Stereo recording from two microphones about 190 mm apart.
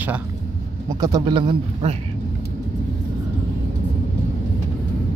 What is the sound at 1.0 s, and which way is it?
Speech, 20° right (ahead or behind).